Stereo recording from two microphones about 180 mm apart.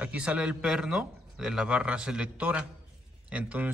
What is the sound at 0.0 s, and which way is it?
A man's voice, 5° right (ahead or behind).